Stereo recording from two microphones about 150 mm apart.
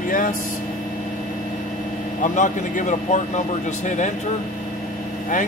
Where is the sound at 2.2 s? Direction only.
55° left (ahead or behind).